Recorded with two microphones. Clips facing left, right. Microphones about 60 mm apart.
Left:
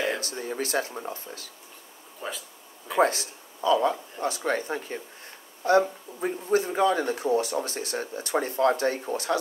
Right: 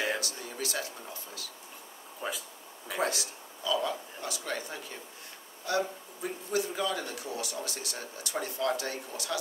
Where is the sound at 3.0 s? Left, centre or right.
Left.